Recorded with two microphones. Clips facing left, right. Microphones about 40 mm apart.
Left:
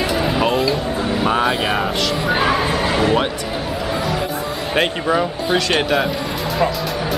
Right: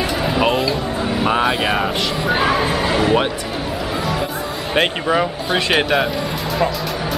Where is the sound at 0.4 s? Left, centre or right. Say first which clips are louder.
Right 2 dB; centre.